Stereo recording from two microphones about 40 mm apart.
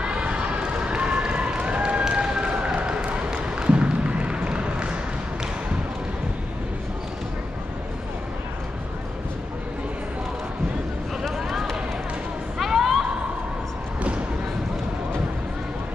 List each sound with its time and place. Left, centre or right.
0.0 s run: right
11.3 s run: centre
12.5 s a sound: centre